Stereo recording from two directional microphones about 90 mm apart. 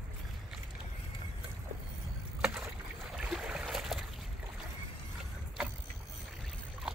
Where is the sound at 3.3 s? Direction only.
10° right (ahead or behind).